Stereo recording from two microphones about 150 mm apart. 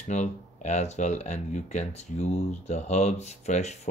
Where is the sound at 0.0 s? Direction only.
50° left (ahead or behind).